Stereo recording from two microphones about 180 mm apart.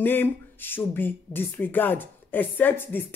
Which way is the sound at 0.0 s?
10° left (ahead or behind).